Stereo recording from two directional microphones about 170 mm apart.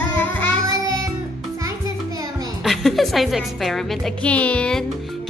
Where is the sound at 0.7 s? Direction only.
20° right (ahead or behind).